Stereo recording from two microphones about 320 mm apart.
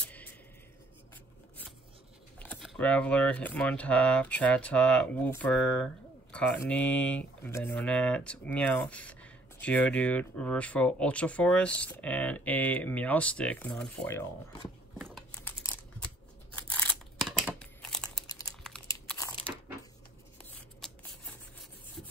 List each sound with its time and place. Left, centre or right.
0.0 s a sound: centre
2.3 s speech: centre
15.0 s crumpling: centre
20.8 s rub: centre